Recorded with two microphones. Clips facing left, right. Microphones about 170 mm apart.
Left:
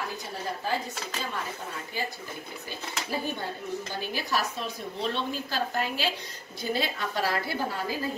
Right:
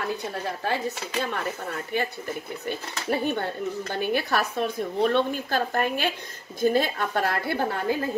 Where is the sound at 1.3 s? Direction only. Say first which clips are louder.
Right 5 dB; 65° right (ahead or behind).